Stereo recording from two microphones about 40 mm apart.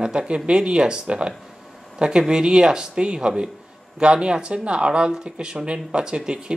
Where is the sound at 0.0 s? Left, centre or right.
Right.